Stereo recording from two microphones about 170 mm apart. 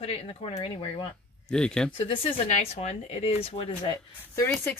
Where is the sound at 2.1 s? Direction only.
30° left (ahead or behind).